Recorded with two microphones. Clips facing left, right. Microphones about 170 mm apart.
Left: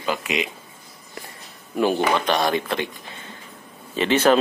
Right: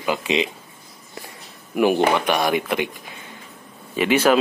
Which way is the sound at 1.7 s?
15° right (ahead or behind).